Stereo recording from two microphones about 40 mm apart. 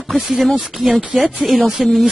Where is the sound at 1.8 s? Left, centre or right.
Centre.